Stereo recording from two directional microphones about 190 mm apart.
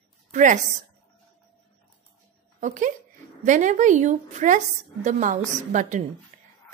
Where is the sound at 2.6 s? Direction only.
40° right (ahead or behind).